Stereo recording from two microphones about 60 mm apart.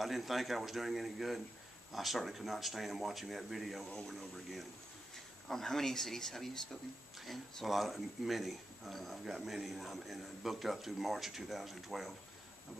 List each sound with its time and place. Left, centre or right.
0.0 s speech: centre